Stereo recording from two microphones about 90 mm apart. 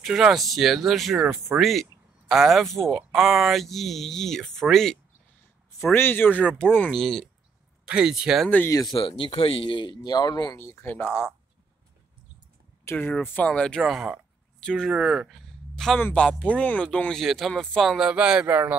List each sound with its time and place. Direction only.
0.0 s speech: 5° right (ahead or behind)
5.9 s speech: 25° left (ahead or behind)
6.9 s speech: centre (ahead or behind)
7.9 s speech: 10° right (ahead or behind)
8.9 s speech: 70° left (ahead or behind); by 10.6 s 45° left (ahead or behind)
10.6 s speech: 25° left (ahead or behind)
12.8 s speech: 20° left (ahead or behind)
13.5 s speech: 10° left (ahead or behind)
13.7 s speech: 5° right (ahead or behind)
14.6 s speech: 10° left (ahead or behind)
14.9 s speech: 5° right (ahead or behind)
17.9 s speech: 10° right (ahead or behind)
18.5 s speech: 20° right (ahead or behind)